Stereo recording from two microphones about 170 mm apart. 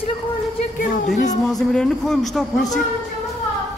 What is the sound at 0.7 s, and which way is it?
Speech, 45° left (ahead or behind).